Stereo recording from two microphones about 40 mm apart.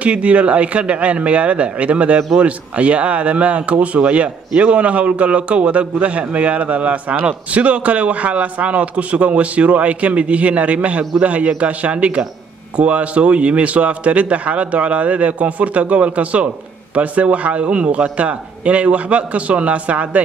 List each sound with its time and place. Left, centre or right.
0.0 s speech: right